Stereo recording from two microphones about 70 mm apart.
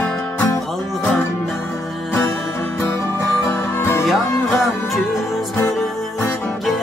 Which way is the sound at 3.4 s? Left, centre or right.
Left.